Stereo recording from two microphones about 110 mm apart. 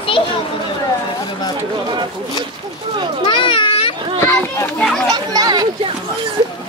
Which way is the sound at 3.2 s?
50° left (ahead or behind).